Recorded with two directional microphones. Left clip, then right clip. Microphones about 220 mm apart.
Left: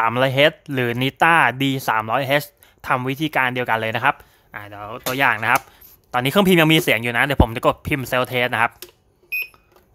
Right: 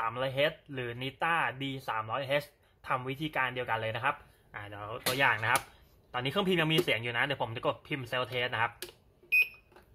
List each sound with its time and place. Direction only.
0.0 s speech: 50° left (ahead or behind)